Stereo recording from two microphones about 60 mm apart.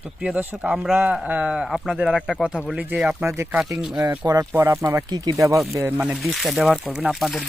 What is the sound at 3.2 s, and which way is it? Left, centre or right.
Speech, right.